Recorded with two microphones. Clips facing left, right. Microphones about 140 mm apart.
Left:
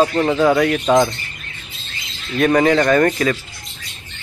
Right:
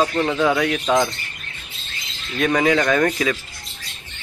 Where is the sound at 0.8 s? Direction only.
15° left (ahead or behind).